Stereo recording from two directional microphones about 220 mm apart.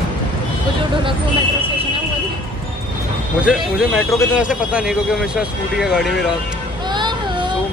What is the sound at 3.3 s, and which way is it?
A man's voice, 5° right (ahead or behind).